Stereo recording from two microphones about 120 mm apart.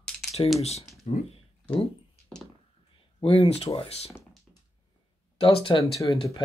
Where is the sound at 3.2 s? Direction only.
50° left (ahead or behind).